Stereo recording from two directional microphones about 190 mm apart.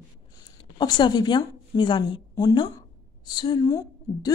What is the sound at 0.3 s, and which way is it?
Speech, 20° left (ahead or behind).